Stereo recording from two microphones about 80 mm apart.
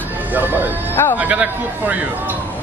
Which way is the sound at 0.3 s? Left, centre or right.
Right.